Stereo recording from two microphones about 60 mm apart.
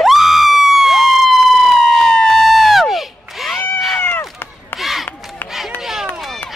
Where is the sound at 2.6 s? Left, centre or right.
Centre.